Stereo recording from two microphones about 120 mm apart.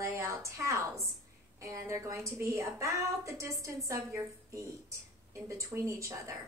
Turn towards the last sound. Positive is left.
turn(degrees=-25)  # may be behind; listen again after turning